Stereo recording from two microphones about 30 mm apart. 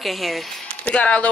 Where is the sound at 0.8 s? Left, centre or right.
Left.